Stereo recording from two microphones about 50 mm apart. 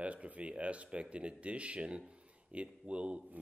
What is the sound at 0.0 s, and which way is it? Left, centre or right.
Speech, right.